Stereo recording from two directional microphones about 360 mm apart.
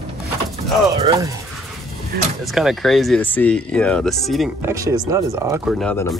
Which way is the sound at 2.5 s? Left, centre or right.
Centre.